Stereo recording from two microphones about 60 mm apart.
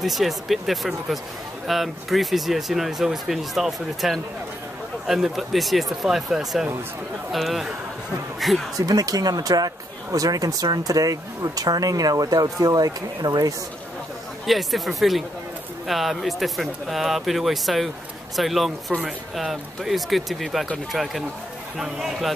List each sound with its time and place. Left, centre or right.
0.0 s speech: centre
8.7 s speech: right
14.4 s speech: centre